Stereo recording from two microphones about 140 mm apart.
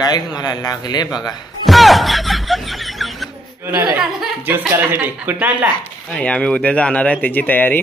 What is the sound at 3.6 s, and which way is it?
Speech, 15° right (ahead or behind).